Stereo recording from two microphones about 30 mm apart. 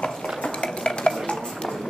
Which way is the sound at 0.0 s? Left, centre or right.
Left.